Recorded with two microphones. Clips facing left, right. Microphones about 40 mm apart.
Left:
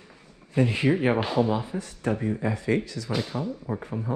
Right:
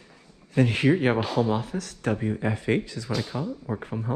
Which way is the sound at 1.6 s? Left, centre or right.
Right.